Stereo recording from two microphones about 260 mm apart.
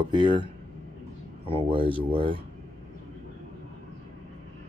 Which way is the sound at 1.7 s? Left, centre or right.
Centre.